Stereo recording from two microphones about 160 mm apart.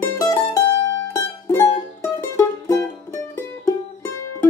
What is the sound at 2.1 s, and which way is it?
Music, 15° left (ahead or behind).